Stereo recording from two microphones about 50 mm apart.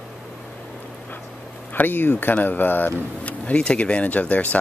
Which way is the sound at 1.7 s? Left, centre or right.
Left.